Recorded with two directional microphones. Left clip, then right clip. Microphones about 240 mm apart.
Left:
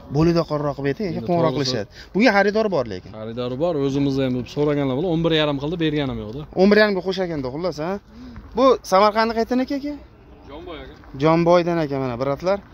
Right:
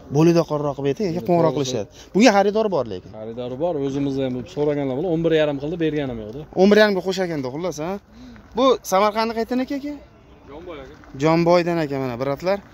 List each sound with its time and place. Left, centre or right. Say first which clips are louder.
0.1 s speech: right 2 dB; centre
0.9 s speech: right 2 dB; centre
2.4 s speech: even; centre
3.2 s speech: left 2 dB; left
6.5 s speech: right 1 dB; centre
11.1 s speech: left 1 dB; centre